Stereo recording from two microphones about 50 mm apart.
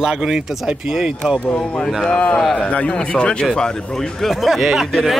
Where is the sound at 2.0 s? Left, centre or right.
Centre.